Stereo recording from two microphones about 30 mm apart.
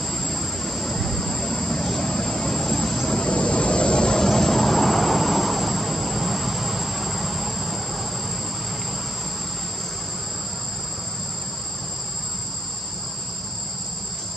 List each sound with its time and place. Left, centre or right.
0.1 s vehicle: centre
3.3 s vehicle: left
4.3 s vehicle: centre